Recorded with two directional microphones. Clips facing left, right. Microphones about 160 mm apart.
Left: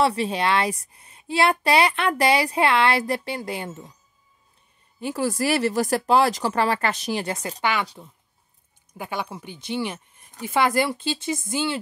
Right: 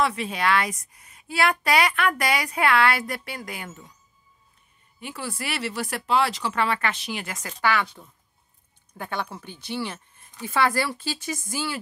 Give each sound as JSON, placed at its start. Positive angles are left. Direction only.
{"t": 0.0, "sound": "a woman's voice", "side_deg": 30}
{"t": 5.0, "sound": "speech", "side_deg": 45}
{"t": 7.6, "sound": "speech", "side_deg": 20}
{"t": 8.9, "sound": "a woman's voice", "side_deg": 10}